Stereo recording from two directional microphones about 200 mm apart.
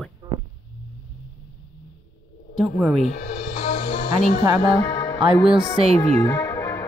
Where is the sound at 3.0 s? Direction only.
40° left (ahead or behind).